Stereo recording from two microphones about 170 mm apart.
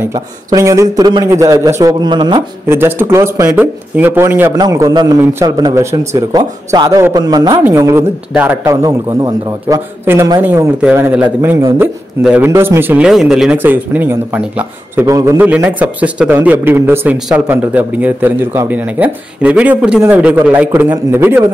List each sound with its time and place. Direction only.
0.0 s a man's voice: 20° right (ahead or behind)
2.7 s speech: 15° right (ahead or behind)
4.5 s a man's voice: 20° right (ahead or behind)
8.8 s a man's voice: 20° right (ahead or behind)